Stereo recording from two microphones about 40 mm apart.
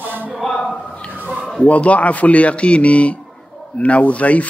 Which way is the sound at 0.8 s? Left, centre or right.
Left.